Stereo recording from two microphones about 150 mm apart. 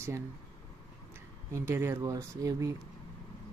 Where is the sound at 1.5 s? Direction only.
15° right (ahead or behind).